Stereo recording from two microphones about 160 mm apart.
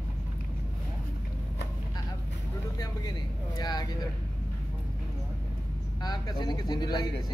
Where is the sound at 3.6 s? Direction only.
25° left (ahead or behind).